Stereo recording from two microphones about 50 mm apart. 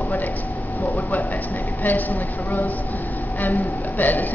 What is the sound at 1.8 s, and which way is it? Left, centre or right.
A woman's voice, left.